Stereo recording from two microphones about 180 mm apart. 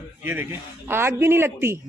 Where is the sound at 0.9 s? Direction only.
15° right (ahead or behind).